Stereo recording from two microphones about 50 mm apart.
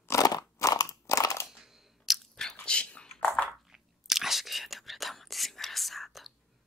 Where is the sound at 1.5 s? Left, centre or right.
Centre.